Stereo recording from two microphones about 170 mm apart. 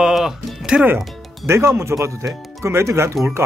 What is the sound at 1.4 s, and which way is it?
Speech, 15° right (ahead or behind).